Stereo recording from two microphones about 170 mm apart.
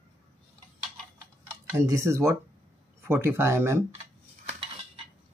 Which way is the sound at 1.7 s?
15° right (ahead or behind).